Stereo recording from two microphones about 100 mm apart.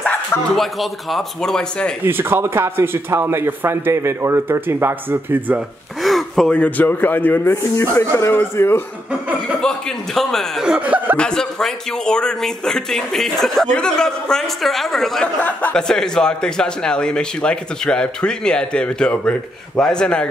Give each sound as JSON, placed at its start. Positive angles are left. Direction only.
{"t": 0.6, "sound": "speech", "side_deg": 0}
{"t": 2.0, "sound": "a man's voice", "side_deg": -20}
{"t": 6.0, "sound": "gasp", "side_deg": 0}
{"t": 6.5, "sound": "speech", "side_deg": 15}
{"t": 9.6, "sound": "speech", "side_deg": 5}
{"t": 11.1, "sound": "speech", "side_deg": 5}
{"t": 15.4, "sound": "speech", "side_deg": 15}
{"t": 15.9, "sound": "speech", "side_deg": 5}